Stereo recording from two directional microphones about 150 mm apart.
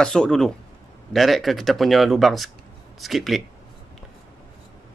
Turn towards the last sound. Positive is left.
turn(degrees=0)  # may be behind; listen again after turning